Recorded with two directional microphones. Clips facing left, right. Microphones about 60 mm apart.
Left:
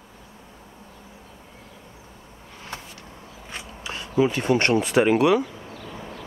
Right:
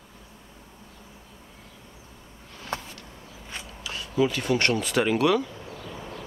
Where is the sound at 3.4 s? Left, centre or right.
Left.